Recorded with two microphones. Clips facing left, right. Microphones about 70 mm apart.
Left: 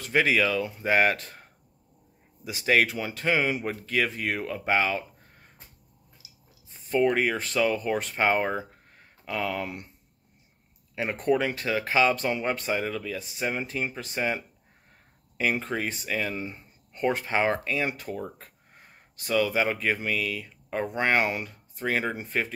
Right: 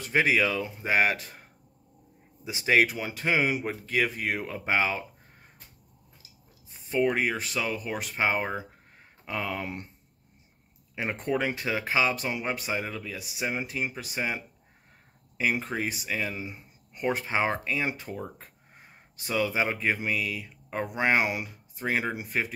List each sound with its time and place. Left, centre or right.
0.0 s speech: centre
6.9 s speech: centre
7.2 s speech: centre; by 9.8 s right
11.0 s speech: right